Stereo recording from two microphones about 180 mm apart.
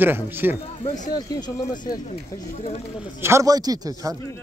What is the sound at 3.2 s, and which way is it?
Speech, 20° right (ahead or behind).